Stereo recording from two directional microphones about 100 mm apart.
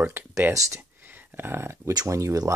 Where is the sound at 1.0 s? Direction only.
20° right (ahead or behind).